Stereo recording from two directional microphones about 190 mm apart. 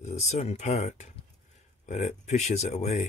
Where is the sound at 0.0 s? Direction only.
35° left (ahead or behind).